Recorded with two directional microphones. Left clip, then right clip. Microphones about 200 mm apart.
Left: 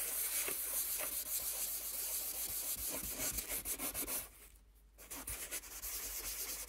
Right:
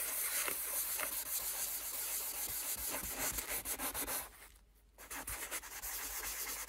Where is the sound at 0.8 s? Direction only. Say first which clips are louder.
Right 2 dB; 25° right (ahead or behind).